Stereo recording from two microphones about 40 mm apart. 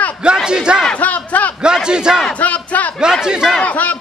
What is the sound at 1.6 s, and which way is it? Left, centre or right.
Speech, right.